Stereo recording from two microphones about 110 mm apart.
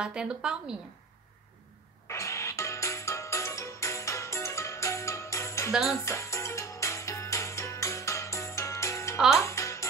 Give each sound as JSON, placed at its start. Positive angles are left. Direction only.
{"t": 0.0, "sound": "a woman's voice", "side_deg": -10}
{"t": 2.0, "sound": "music", "side_deg": 25}
{"t": 5.7, "sound": "jingle bell", "side_deg": -5}
{"t": 6.0, "sound": "music", "side_deg": 25}